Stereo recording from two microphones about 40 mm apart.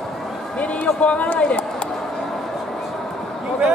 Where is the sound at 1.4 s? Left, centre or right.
Left.